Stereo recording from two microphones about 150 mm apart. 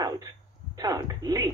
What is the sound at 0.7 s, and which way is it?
Speech, 25° right (ahead or behind).